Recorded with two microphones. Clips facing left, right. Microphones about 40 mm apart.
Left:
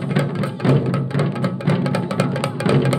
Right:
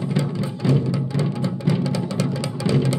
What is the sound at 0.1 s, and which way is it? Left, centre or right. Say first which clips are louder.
Music: left 6 dB; left.